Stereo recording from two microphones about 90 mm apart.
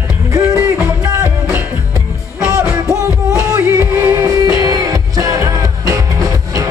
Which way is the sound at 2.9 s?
35° left (ahead or behind).